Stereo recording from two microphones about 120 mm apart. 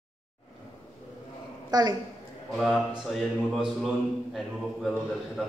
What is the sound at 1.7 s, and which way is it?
Speech, 35° right (ahead or behind).